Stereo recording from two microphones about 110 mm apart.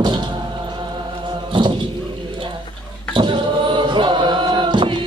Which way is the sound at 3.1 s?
45° right (ahead or behind).